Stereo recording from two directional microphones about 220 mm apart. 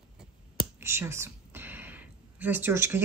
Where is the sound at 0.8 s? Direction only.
10° right (ahead or behind).